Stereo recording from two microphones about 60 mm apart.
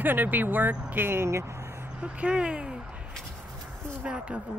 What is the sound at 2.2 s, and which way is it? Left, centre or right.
Speech, centre.